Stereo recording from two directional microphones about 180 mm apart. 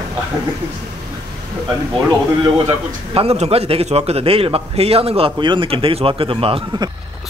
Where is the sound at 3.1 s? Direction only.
35° right (ahead or behind).